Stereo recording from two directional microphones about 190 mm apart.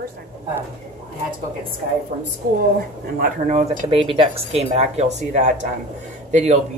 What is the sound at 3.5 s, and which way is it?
Speech, 30° right (ahead or behind).